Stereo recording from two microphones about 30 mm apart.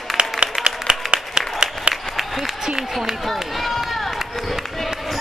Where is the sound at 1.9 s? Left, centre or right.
Right.